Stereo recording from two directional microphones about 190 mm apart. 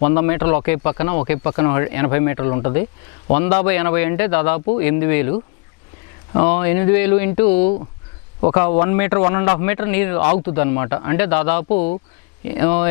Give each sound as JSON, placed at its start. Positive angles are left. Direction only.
{"t": 0.0, "sound": "speech", "side_deg": 15}
{"t": 6.3, "sound": "speech", "side_deg": 15}